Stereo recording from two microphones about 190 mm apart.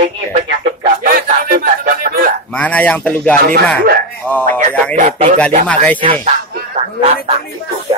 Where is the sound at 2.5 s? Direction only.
5° left (ahead or behind).